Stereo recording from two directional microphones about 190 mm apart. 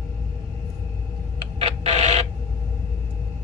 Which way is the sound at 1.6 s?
30° right (ahead or behind).